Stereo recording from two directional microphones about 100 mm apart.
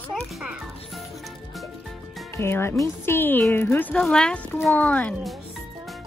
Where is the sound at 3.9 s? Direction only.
5° left (ahead or behind).